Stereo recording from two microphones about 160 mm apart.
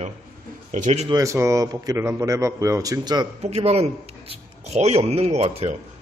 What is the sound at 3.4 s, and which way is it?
A man's voice, 40° right (ahead or behind).